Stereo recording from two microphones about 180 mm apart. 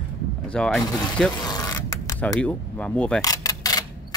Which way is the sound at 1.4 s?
20° left (ahead or behind).